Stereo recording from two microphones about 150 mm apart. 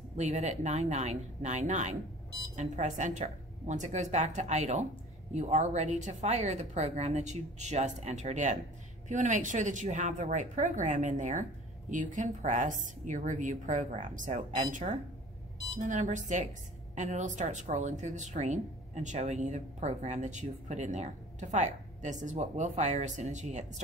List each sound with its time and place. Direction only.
0.2 s a woman's voice: 50° right (ahead or behind)